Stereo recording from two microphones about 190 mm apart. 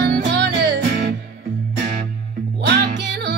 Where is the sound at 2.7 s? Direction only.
60° right (ahead or behind).